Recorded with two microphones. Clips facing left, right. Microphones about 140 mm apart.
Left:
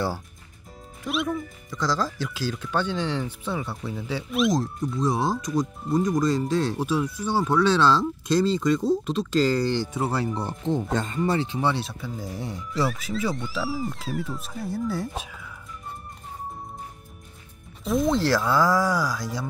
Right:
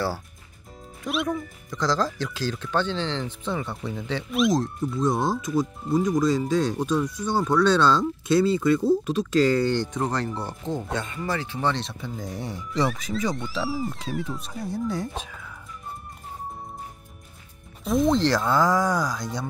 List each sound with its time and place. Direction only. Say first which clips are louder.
1.0 s speech: even; centre (ahead or behind)
10.9 s speech: left 3 dB; 40° left (ahead or behind)
11.2 s speech: left 1 dB; 25° left (ahead or behind); by 15.5 s centre (ahead or behind)
17.8 s speech: right 1 dB; centre (ahead or behind)